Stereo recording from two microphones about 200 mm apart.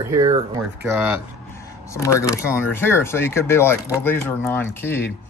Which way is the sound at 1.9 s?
15° left (ahead or behind).